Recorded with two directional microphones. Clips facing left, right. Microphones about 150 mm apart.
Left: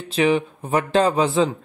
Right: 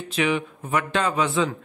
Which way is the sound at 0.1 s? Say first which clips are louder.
Left 5 dB; 30° left (ahead or behind).